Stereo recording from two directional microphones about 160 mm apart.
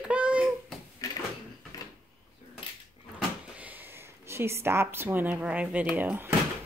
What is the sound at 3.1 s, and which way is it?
Drawer open or close, 10° right (ahead or behind).